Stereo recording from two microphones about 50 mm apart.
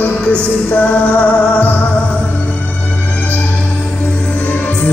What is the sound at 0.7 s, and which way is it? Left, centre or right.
Music, left.